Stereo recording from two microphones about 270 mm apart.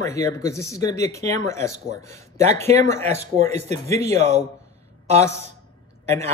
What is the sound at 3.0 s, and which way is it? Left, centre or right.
Speech, right.